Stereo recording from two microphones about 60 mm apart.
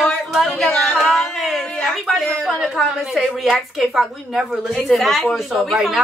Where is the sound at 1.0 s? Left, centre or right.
Centre.